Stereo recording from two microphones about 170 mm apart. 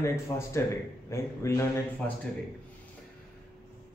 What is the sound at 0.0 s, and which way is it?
A man's voice, 15° left (ahead or behind).